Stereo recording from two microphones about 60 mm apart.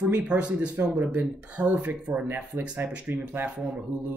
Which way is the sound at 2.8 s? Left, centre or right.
Right.